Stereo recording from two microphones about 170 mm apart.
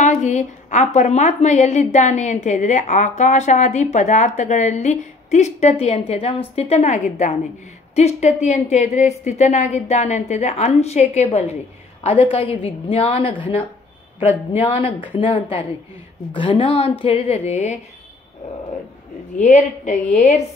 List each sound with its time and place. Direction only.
0.0 s a woman's voice: 45° left (ahead or behind)
19.3 s a woman's voice: 45° left (ahead or behind)